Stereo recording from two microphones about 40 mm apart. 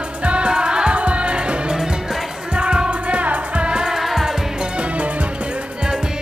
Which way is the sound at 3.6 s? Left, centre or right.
Right.